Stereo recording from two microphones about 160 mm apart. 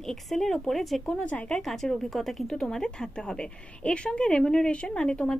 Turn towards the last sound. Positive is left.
turn(degrees=5)  # may be behind; listen again after turning